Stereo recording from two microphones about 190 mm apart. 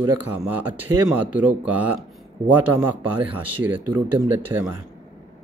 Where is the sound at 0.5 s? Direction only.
10° right (ahead or behind).